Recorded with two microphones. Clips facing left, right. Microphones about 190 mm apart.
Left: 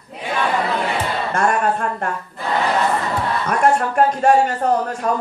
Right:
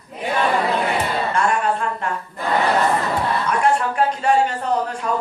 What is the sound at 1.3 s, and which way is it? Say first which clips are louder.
Speech: left 3 dB; 45° left (ahead or behind).